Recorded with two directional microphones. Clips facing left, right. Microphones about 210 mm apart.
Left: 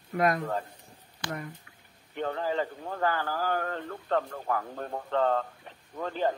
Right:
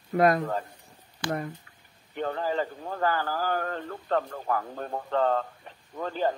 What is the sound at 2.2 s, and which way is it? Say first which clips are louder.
Speech: right 1 dB; 40° right (ahead or behind).